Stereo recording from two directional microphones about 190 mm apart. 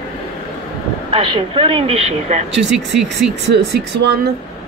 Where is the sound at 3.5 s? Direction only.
60° right (ahead or behind).